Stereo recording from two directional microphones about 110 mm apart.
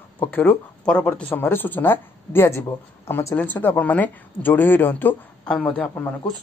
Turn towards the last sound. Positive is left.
turn(degrees=20)  # may be behind; listen again after turning